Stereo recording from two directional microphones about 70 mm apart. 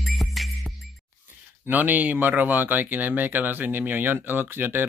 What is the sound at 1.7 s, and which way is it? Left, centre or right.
Speech, right.